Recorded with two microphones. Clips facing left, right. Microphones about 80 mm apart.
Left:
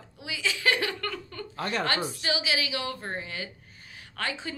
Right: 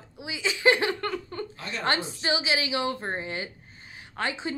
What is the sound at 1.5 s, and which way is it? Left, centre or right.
Speech, left.